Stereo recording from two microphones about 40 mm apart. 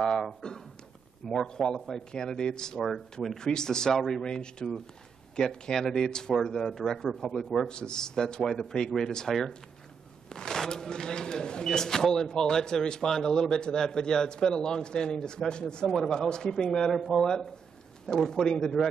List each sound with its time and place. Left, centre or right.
0.0 s speech: centre
2.8 s speech: centre
3.3 s speech: centre
7.6 s speech: left
10.3 s speech: centre